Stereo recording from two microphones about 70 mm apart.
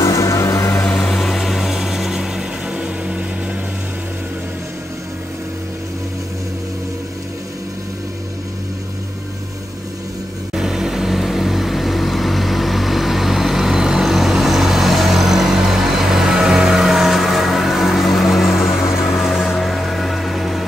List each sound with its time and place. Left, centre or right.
0.0 s music: left
0.8 s vehicle: centre
1.1 s vehicle: centre
10.5 s vehicle: centre